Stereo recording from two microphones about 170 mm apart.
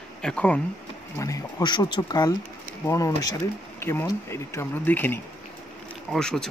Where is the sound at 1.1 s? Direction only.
20° left (ahead or behind).